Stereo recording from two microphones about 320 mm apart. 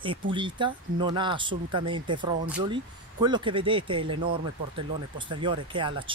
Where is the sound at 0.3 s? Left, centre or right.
Centre.